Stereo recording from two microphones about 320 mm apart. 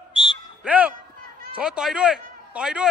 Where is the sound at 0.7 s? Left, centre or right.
Centre.